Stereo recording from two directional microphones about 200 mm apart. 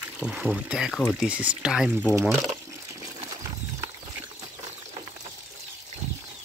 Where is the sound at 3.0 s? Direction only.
15° right (ahead or behind).